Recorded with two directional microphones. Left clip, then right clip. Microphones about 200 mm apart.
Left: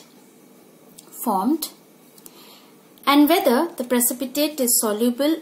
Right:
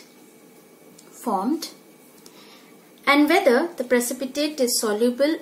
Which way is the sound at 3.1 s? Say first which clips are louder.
Even; 40° left (ahead or behind).